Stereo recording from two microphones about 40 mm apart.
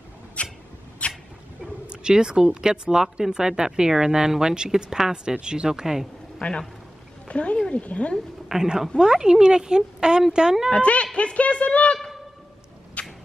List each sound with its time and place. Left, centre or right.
0.4 s a sound: left
1.0 s cat: left
1.9 s speech: centre
6.4 s speech: left
8.5 s a woman's voice: centre
10.7 s speech: left
13.0 s rodents: left